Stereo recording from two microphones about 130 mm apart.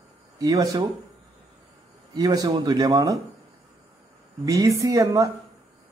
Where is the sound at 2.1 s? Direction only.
30° right (ahead or behind).